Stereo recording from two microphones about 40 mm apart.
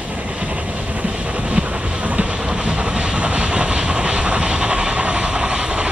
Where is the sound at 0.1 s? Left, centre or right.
Right.